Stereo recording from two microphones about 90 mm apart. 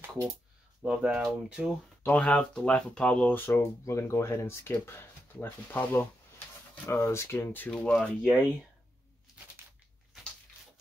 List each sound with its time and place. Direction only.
0.8 s speech: 10° right (ahead or behind)
2.0 s speech: 15° left (ahead or behind)
6.9 s speech: 30° left (ahead or behind)
7.7 s speech: 10° left (ahead or behind)